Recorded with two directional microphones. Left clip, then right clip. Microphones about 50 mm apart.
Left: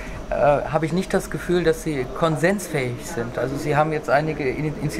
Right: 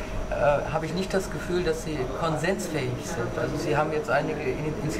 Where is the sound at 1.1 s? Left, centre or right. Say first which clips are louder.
Left 4 dB; left.